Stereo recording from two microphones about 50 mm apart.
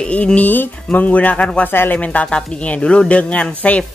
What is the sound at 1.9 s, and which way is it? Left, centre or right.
Speech, left.